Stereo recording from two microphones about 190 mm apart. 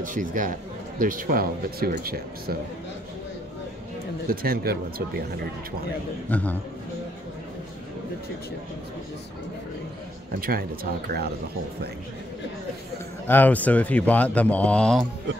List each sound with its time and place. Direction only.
0.0 s speech: 45° right (ahead or behind)
4.3 s speech: 50° right (ahead or behind)
6.2 s speech: 10° left (ahead or behind)
10.4 s speech: 50° right (ahead or behind)
13.3 s speech: 10° left (ahead or behind)